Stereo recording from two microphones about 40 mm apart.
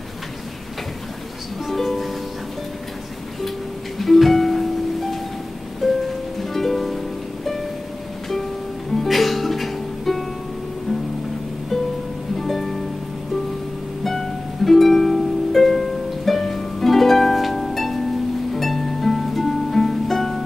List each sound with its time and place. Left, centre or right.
1.7 s music: centre
4.0 s music: centre
8.9 s music: centre
12.4 s music: centre
14.0 s harp: centre
18.5 s music: centre